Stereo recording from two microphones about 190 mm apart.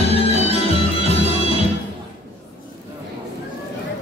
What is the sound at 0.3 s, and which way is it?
Music, 35° left (ahead or behind).